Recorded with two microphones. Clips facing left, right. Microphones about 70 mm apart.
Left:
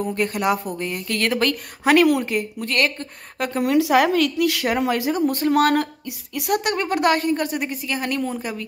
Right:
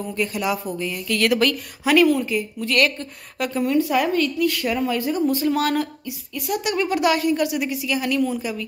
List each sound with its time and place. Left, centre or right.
0.1 s speech: left
1.9 s a woman's voice: left
2.7 s speech: left
3.6 s a woman's voice: left